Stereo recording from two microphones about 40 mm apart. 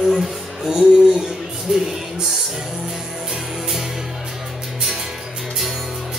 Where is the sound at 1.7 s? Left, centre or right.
Centre.